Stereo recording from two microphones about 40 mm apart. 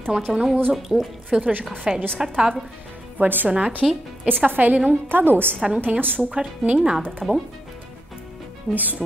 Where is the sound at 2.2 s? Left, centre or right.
Centre.